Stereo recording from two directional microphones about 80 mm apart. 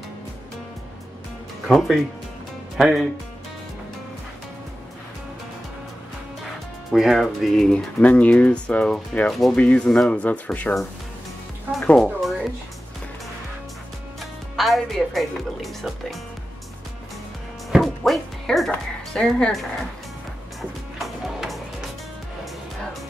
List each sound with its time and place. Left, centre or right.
1.7 s speech: centre
6.9 s speech: centre
7.7 s speech: centre
9.3 s speech: centre
9.6 s speech: centre
12.0 s music: centre
14.6 s speech: centre
17.7 s music: centre
18.7 s speech: centre
21.0 s music: centre